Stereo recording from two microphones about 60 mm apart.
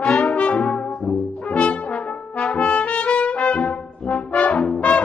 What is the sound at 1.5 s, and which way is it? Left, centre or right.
Brass instrument, centre.